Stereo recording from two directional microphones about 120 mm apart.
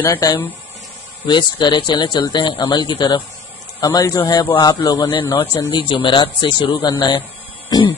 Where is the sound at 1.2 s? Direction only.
40° left (ahead or behind).